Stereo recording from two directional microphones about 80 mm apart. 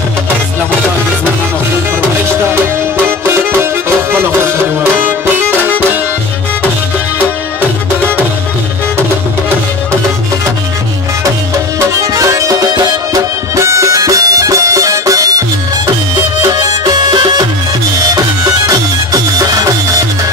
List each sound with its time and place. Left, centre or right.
12.1 s music: right
13.7 s music: right
16.6 s music: right
19.3 s music: right